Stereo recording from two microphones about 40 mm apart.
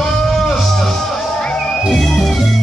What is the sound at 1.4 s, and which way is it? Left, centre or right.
Music, centre.